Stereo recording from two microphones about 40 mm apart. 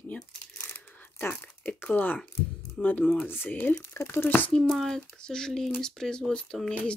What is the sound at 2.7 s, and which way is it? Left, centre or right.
Speech, left.